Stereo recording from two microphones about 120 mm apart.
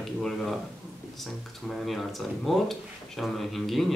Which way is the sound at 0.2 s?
Centre (ahead or behind).